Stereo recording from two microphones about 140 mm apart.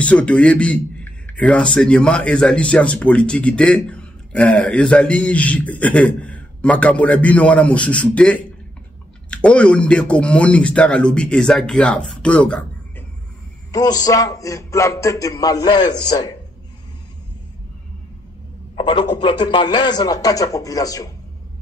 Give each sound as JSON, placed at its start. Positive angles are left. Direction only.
{"t": 0.0, "sound": "speech", "side_deg": 10}
{"t": 13.7, "sound": "music", "side_deg": 25}
{"t": 18.8, "sound": "music", "side_deg": 35}